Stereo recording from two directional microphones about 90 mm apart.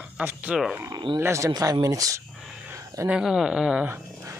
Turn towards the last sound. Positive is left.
turn(degrees=-30)  # may be behind; listen again after turning